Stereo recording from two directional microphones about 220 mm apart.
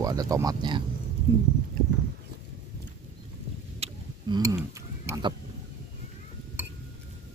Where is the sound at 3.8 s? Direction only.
20° right (ahead or behind).